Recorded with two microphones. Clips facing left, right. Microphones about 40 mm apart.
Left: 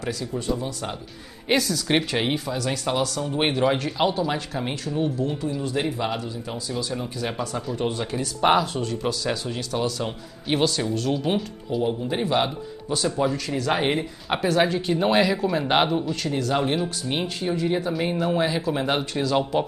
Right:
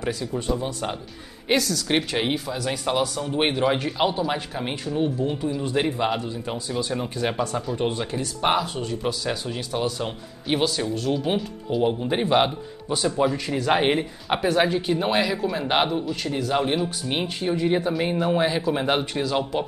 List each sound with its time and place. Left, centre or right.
0.0 s a man's voice: centre
1.5 s a man's voice: centre; by 7.3 s right
7.3 s speech: centre
7.7 s a man's voice: centre
11.8 s a man's voice: right
14.3 s a man's voice: centre